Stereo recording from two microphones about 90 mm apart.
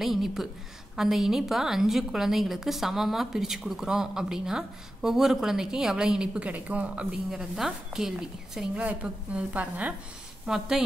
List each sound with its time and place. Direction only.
0.0 s a woman's voice: 5° right (ahead or behind)
10.4 s a woman's voice: 5° right (ahead or behind)